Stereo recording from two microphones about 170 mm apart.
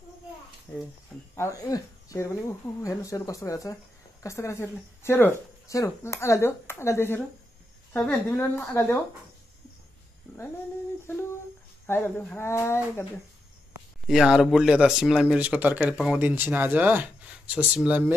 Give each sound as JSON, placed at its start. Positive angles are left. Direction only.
{"t": 1.3, "sound": "a woman's voice", "side_deg": 20}
{"t": 11.8, "sound": "speech", "side_deg": 10}
{"t": 14.0, "sound": "speech", "side_deg": -5}